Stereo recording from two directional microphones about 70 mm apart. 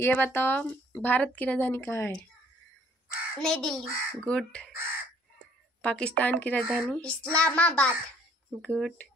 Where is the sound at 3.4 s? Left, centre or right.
Centre.